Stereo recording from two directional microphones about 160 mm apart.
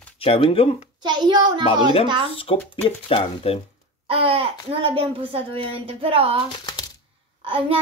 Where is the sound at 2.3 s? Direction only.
35° left (ahead or behind).